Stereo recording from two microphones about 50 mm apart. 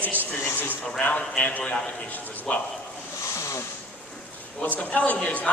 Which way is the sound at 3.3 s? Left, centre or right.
Left.